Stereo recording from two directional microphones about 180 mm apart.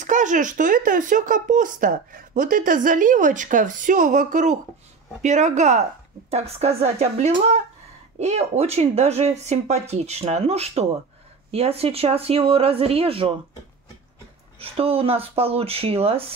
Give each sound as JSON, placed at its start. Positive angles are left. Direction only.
{"t": 0.0, "sound": "speech", "side_deg": -45}
{"t": 14.6, "sound": "speech", "side_deg": -30}